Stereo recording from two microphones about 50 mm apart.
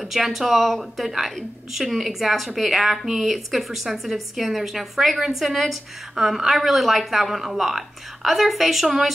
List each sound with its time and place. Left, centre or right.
0.0 s a woman's voice: centre